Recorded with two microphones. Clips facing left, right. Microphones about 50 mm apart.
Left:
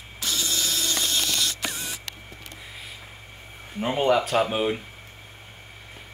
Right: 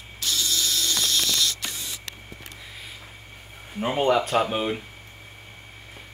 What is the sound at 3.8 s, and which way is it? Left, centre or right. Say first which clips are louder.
Speech: even; centre.